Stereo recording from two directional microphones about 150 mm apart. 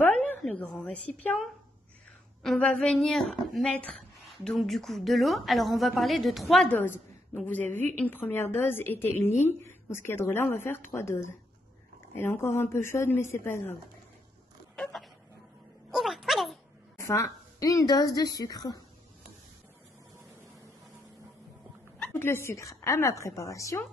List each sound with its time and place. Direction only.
0.4 s speech: 10° left (ahead or behind)
2.4 s a woman's voice: 5° left (ahead or behind)
14.8 s a sound: centre (ahead or behind)
16.9 s a woman's voice: 20° left (ahead or behind)
22.0 s a woman's voice: 15° left (ahead or behind)